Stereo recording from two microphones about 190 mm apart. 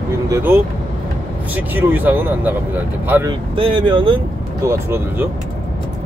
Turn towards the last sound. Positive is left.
turn(degrees=-15)  # may be behind; listen again after turning